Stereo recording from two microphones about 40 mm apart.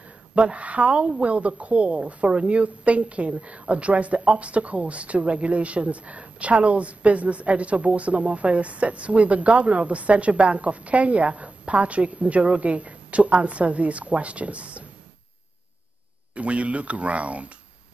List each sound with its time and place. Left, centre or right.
0.3 s speech: right
16.3 s speech: right